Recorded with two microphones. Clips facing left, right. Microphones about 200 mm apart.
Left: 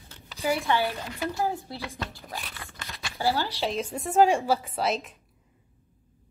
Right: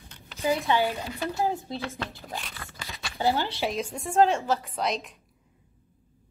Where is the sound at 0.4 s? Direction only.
15° right (ahead or behind).